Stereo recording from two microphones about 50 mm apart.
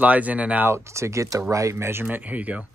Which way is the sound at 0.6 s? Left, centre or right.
Right.